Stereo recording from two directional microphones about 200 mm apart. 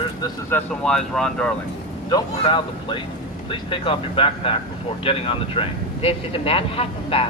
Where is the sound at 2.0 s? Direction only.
20° left (ahead or behind).